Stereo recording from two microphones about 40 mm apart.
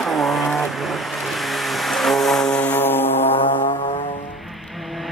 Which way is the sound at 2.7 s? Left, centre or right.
Left.